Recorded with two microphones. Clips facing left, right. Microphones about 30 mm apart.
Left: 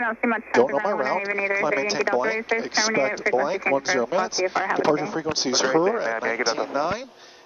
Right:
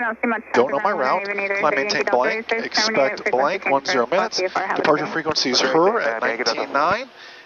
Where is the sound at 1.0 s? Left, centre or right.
Right.